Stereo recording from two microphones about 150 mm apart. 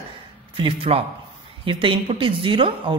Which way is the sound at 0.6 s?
40° right (ahead or behind).